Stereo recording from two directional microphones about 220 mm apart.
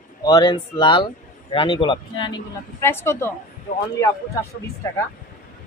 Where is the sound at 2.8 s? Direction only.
10° left (ahead or behind).